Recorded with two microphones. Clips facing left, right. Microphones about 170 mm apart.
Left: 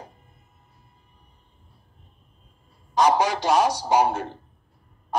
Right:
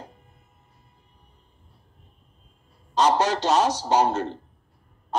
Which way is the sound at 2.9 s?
10° left (ahead or behind).